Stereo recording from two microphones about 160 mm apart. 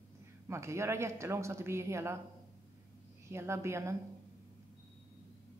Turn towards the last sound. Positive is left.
turn(degrees=-15)  # may be behind; listen again after turning